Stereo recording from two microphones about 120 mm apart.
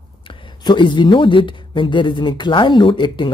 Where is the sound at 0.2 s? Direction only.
45° left (ahead or behind).